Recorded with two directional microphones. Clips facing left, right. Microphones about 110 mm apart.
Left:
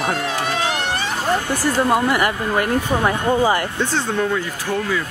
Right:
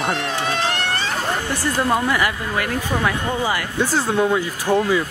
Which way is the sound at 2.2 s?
40° left (ahead or behind).